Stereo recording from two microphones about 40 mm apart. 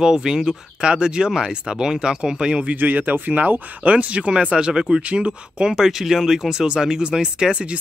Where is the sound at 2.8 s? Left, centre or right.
Right.